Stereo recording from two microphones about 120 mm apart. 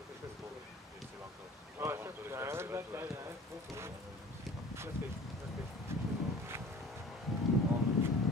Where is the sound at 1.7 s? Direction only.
20° right (ahead or behind).